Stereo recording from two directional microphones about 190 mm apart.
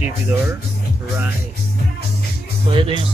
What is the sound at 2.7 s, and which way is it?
Speech, 25° right (ahead or behind).